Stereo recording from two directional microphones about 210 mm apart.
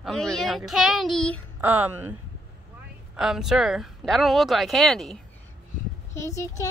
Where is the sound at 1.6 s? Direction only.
10° right (ahead or behind).